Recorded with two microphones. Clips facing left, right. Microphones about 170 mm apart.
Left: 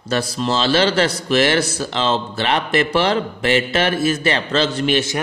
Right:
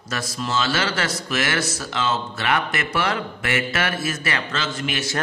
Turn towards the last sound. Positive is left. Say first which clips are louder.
# left 9 dB
turn(degrees=35)  # may be behind; listen again after turning